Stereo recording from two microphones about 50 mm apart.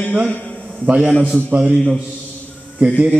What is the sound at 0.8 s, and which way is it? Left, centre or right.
Speech, centre.